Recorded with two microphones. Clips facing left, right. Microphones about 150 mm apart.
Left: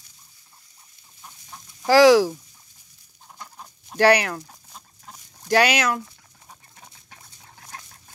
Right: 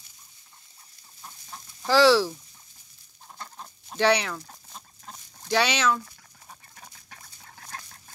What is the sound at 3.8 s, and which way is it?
Speech, 10° left (ahead or behind).